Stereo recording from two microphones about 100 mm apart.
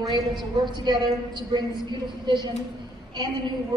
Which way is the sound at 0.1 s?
45° right (ahead or behind).